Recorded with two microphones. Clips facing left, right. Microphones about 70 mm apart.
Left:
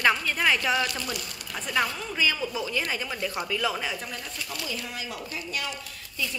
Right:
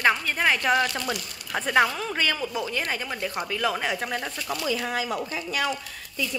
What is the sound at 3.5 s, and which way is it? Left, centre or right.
Speech, right.